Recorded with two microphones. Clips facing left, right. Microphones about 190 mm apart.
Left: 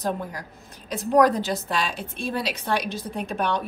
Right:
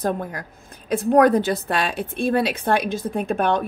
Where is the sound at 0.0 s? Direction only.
55° right (ahead or behind).